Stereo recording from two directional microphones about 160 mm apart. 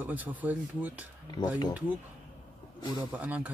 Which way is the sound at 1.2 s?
25° left (ahead or behind).